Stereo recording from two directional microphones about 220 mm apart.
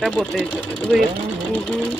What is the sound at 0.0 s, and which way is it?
Speech, centre (ahead or behind).